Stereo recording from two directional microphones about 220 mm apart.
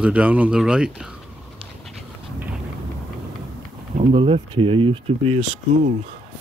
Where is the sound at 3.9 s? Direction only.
25° right (ahead or behind).